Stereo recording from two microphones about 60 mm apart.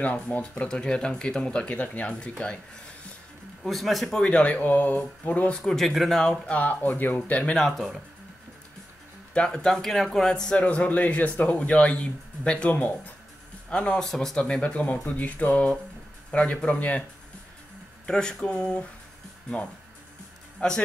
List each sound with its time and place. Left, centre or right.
0.0 s a man's voice: left
3.6 s speech: centre
4.2 s speech: left
5.6 s speech: centre
6.4 s speech: left
7.5 s speech: centre
9.3 s a man's voice: centre
12.7 s speech: left
13.7 s speech: centre
14.0 s speech: centre; by 17.0 s left
18.0 s a man's voice: centre